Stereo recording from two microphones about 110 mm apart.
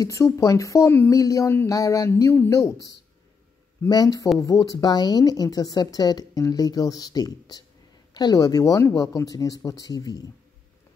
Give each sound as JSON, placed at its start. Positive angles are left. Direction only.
{"t": 0.0, "sound": "speech", "side_deg": 30}
{"t": 3.9, "sound": "speech", "side_deg": 35}